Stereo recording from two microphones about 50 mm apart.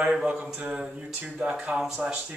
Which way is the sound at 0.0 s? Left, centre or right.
Centre.